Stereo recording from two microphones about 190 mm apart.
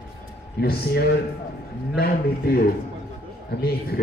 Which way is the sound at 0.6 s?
55° left (ahead or behind).